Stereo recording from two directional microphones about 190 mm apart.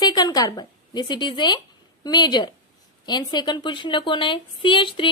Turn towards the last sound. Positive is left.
turn(degrees=25)  # may be behind; listen again after turning